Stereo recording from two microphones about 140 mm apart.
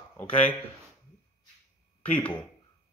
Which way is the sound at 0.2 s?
10° left (ahead or behind).